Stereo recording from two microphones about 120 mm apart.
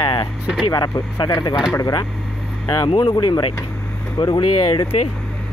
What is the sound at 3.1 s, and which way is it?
Speech, 35° left (ahead or behind).